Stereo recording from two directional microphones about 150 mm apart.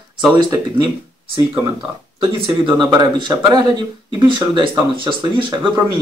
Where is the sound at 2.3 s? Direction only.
30° right (ahead or behind).